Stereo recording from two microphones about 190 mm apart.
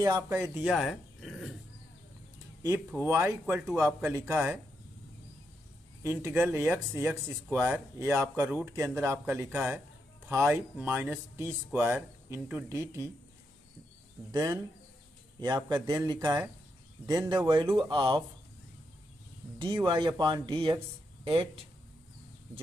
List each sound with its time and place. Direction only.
0.0 s speech: 15° right (ahead or behind)
0.7 s speech: centre (ahead or behind)
2.9 s speech: 10° right (ahead or behind)
6.0 s speech: 15° right (ahead or behind)
14.3 s speech: 20° right (ahead or behind)
19.6 s speech: 25° right (ahead or behind)